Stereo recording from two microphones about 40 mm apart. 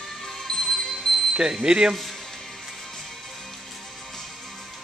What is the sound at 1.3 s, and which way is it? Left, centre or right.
Speech, centre.